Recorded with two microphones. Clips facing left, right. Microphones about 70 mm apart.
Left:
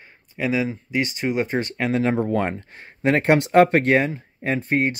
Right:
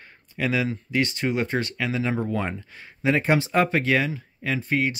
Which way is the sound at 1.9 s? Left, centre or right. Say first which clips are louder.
Left 7 dB; left.